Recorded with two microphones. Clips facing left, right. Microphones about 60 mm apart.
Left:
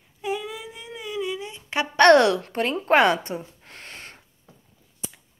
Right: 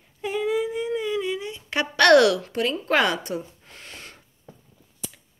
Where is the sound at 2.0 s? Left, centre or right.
Left.